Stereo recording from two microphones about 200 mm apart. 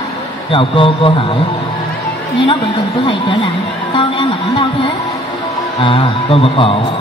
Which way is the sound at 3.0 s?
25° left (ahead or behind).